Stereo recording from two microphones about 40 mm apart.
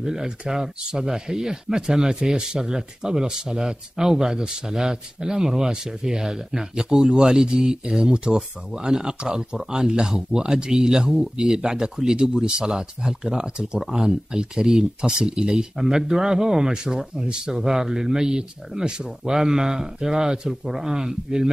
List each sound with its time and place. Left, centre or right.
0.0 s speech: centre